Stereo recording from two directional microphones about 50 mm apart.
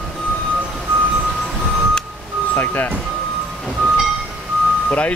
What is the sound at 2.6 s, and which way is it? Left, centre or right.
Speech, left.